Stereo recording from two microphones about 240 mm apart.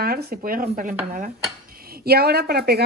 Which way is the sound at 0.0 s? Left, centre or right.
Right.